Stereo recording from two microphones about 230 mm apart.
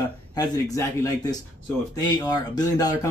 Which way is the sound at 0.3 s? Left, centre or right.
Centre.